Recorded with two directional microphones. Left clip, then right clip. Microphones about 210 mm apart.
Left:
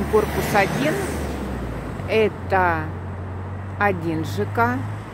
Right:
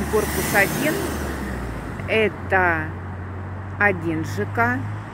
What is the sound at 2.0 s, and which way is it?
Speech, 10° left (ahead or behind).